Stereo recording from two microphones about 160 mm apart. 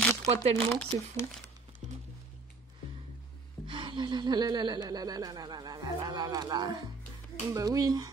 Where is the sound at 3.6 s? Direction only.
30° right (ahead or behind).